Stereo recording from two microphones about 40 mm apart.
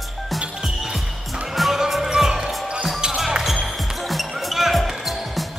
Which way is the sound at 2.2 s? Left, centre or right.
Centre.